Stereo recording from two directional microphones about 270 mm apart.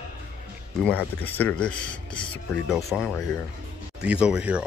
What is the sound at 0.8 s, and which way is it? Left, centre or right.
Speech, centre.